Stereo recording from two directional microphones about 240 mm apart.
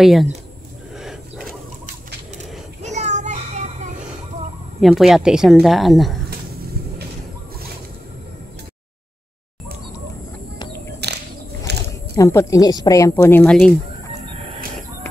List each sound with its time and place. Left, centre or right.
0.0 s speech: centre
2.8 s child singing: right
4.7 s speech: centre
11.0 s a sound: right
12.2 s speech: centre